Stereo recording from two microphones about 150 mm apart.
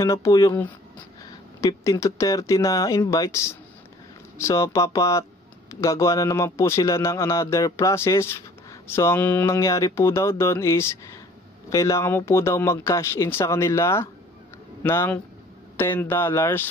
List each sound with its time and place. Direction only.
0.0 s a man's voice: 20° left (ahead or behind)